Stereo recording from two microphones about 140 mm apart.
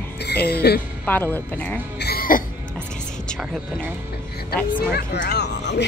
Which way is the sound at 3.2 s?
5° left (ahead or behind).